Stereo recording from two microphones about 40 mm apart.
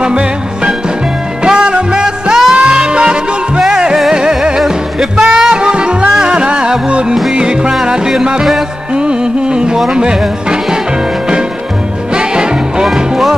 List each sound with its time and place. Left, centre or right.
0.0 s music: right
12.1 s music: right